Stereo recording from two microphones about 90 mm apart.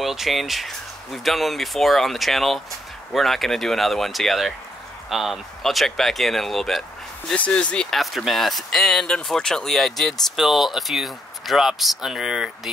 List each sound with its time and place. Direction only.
0.0 s speech: centre (ahead or behind)
7.3 s speech: 15° left (ahead or behind); by 12.4 s 5° right (ahead or behind)